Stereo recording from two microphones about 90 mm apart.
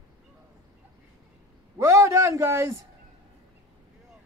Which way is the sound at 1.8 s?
30° right (ahead or behind).